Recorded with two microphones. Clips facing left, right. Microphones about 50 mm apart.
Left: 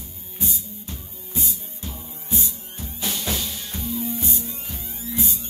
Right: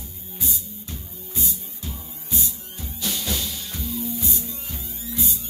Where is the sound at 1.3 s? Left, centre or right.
Left.